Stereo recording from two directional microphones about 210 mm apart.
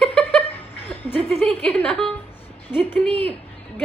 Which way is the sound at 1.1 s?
30° right (ahead or behind).